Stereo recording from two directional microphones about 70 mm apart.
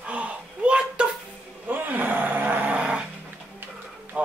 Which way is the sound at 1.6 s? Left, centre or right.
Right.